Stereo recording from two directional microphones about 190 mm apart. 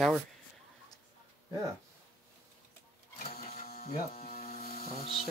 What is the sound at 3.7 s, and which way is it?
Electric shaver, 50° left (ahead or behind).